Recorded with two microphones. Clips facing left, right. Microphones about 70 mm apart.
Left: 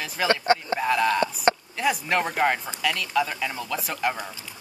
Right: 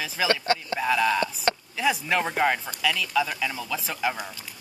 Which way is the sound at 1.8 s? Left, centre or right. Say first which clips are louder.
Even; centre.